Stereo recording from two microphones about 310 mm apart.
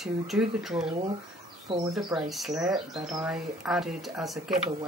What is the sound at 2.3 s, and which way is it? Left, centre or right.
Speech, centre.